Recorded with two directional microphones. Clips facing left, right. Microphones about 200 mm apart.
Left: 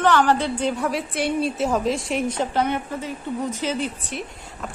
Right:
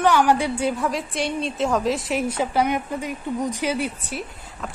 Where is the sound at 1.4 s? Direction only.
5° left (ahead or behind).